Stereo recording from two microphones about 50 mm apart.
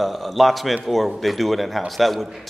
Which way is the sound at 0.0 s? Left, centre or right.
Centre.